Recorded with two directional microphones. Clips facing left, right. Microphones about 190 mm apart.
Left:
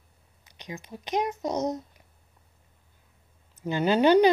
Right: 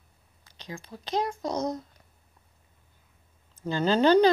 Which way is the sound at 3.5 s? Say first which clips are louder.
Left 1 dB; 15° left (ahead or behind).